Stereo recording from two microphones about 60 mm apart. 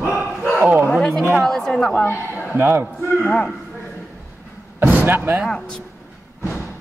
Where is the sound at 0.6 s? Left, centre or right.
Right.